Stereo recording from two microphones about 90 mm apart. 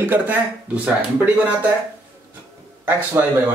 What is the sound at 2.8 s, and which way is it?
Speech, 25° right (ahead or behind).